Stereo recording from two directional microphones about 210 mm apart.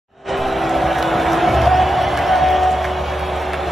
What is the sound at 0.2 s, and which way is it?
Music, centre (ahead or behind).